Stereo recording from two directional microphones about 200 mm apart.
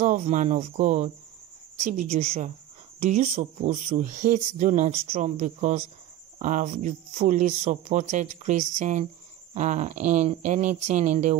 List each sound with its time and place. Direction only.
0.0 s speech: 35° right (ahead or behind)